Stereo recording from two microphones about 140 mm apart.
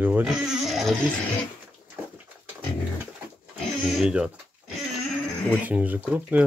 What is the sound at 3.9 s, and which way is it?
Speech, 5° right (ahead or behind).